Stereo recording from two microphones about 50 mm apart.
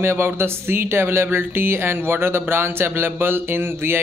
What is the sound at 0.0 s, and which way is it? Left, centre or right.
A man's voice, right.